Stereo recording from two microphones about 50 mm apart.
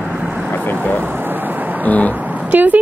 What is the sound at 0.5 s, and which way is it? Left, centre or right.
Speech, left.